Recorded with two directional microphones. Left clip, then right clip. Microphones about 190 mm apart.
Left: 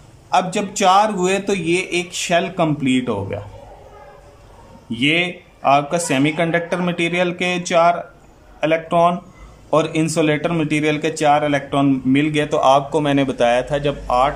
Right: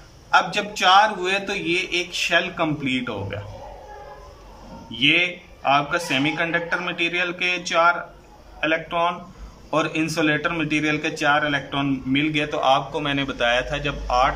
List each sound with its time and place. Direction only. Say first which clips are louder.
0.3 s a man's voice: left 1 dB; 30° left (ahead or behind)
4.9 s a man's voice: left 1 dB; 25° left (ahead or behind)